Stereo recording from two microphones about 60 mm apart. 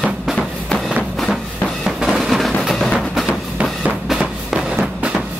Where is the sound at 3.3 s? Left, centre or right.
Right.